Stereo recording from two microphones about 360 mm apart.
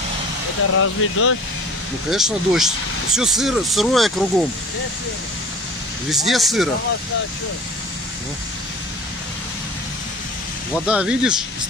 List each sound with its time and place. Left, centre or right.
0.7 s speech: left
2.0 s speech: centre
6.0 s speech: centre
10.9 s speech: centre